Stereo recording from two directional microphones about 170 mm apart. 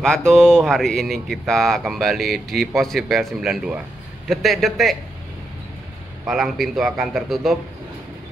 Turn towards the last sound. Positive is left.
turn(degrees=0)  # may be behind; listen again after turning